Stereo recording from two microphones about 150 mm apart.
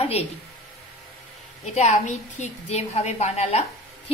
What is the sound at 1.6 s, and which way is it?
A woman's voice, 50° left (ahead or behind).